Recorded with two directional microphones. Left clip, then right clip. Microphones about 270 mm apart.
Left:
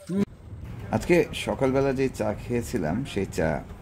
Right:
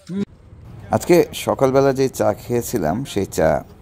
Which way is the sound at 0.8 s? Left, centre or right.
Right.